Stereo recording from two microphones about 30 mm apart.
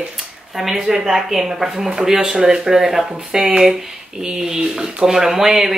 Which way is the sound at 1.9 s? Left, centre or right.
Right.